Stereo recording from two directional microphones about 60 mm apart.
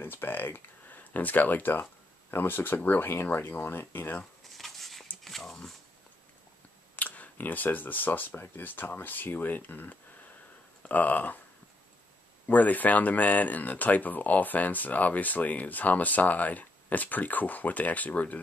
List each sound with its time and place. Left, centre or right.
0.0 s speech: left
4.6 s a sound: centre
7.0 s speech: left
12.4 s speech: left